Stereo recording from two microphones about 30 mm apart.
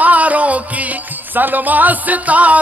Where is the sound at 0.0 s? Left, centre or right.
Right.